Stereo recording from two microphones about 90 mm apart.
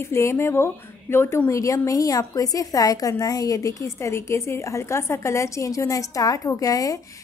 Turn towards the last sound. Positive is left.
turn(degrees=40)  # may be behind; listen again after turning